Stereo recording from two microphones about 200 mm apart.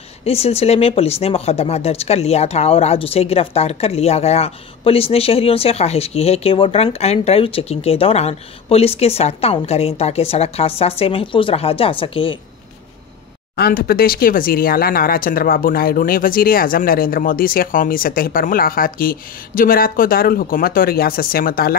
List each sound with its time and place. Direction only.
0.2 s speech: 30° left (ahead or behind)
13.6 s speech: 50° left (ahead or behind)